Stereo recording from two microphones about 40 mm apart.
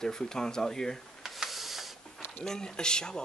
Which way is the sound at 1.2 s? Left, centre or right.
Centre.